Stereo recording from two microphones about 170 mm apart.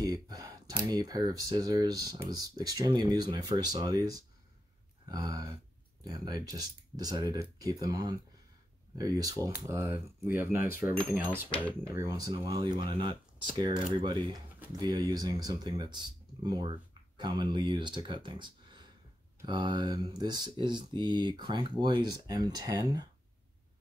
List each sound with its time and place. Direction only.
0.0 s speech: 20° right (ahead or behind)